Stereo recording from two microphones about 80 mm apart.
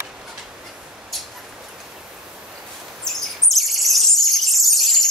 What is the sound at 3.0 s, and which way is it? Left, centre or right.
Bird vocalization, centre.